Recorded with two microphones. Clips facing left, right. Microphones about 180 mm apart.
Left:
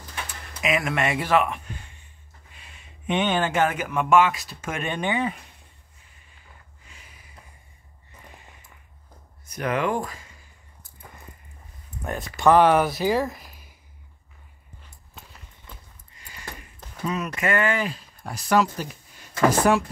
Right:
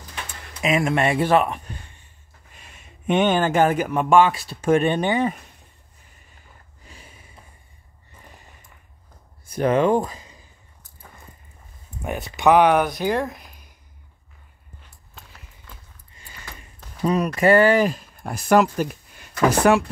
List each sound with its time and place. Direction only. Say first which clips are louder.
0.6 s speech: right 4 dB; 25° right (ahead or behind)
2.5 s speech: right 3 dB; 45° right (ahead or behind)
6.9 s a sound: right 6 dB; 30° right (ahead or behind)
9.5 s speech: right 7 dB; 30° right (ahead or behind)
12.0 s speech: right 1 dB; 5° right (ahead or behind)
15.1 s a sound: even; centre (ahead or behind)
17.0 s speech: right 8 dB; 40° right (ahead or behind); by 19.8 s 65° right (ahead or behind)